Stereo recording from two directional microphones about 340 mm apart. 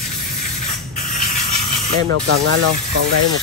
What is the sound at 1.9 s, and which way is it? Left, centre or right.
Speech, right.